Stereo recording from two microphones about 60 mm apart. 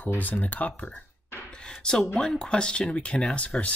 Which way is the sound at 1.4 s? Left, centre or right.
Centre.